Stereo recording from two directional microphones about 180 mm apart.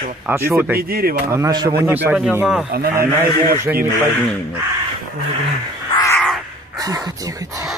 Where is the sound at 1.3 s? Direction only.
20° right (ahead or behind); by 2.6 s 5° right (ahead or behind).